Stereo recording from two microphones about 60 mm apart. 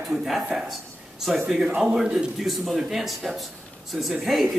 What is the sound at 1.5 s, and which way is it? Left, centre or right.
A man's voice, centre.